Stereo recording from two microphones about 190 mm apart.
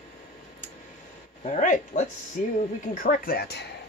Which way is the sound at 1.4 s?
40° left (ahead or behind).